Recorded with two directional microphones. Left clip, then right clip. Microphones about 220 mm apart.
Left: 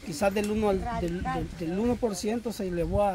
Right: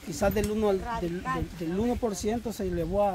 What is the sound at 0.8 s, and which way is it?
Speech, 15° right (ahead or behind).